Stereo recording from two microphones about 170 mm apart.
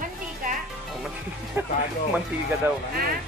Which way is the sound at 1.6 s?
15° right (ahead or behind).